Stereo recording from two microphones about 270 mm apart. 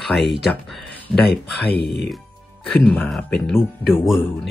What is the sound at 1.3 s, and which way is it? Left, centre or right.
Speech, left.